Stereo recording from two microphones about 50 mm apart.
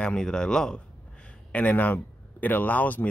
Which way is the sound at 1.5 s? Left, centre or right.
Left.